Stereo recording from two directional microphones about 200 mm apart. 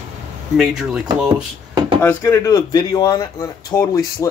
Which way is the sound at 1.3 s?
25° right (ahead or behind).